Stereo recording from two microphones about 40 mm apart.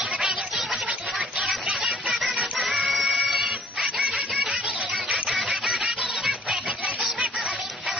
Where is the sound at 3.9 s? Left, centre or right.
Right.